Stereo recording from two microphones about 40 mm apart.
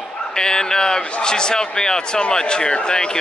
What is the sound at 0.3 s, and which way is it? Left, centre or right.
A man's voice, centre.